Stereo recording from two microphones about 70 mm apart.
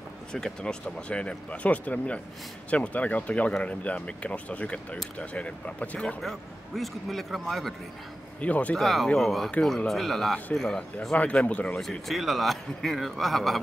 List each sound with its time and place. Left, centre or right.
0.3 s speech: centre
6.2 s a man's voice: centre
8.4 s speech: left
8.7 s a man's voice: centre
11.8 s a man's voice: centre